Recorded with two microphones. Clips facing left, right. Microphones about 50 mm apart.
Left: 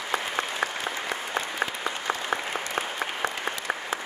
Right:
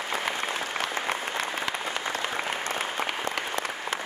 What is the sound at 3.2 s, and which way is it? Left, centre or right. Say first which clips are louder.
Applause: left 1 dB; left.